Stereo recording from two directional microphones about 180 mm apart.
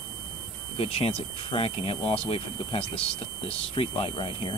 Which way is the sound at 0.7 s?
35° left (ahead or behind).